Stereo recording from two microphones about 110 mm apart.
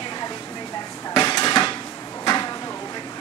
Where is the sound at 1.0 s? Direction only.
35° left (ahead or behind).